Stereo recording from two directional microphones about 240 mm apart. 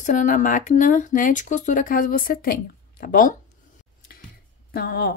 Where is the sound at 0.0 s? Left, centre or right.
Left.